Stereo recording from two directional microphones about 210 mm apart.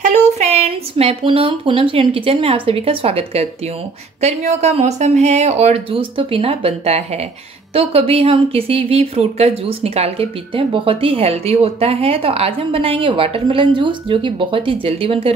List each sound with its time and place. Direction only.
0.0 s speech: 30° right (ahead or behind)